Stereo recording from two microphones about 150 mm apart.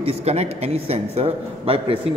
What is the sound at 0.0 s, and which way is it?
A woman's voice, 40° right (ahead or behind).